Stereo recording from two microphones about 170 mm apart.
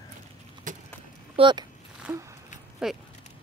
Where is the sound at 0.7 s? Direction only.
50° right (ahead or behind).